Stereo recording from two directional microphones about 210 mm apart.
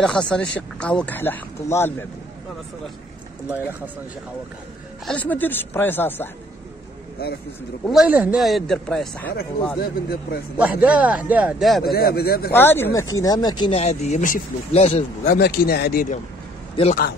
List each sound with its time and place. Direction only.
0.0 s speech: 5° left (ahead or behind)
3.4 s speech: 10° right (ahead or behind)
5.0 s speech: 5° left (ahead or behind)
7.8 s speech: centre (ahead or behind)
9.8 s speech: 50° left (ahead or behind)
10.6 s speech: 5° right (ahead or behind)
11.8 s speech: 45° left (ahead or behind)
12.5 s speech: 10° left (ahead or behind); by 15.0 s 30° left (ahead or behind)
15.2 s speech: 45° left (ahead or behind)
16.8 s speech: 25° left (ahead or behind)